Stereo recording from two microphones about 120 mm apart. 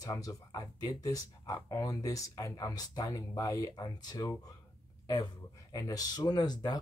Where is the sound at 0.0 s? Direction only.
30° left (ahead or behind).